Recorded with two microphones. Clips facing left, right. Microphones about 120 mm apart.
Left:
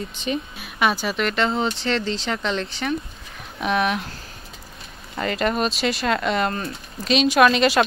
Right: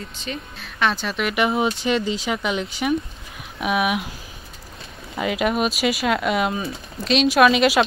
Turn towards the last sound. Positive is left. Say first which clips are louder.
# right 1 dB
turn(degrees=-5)  # may be behind; listen again after turning